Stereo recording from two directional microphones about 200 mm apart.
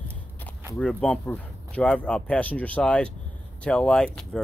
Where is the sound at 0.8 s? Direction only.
5° left (ahead or behind).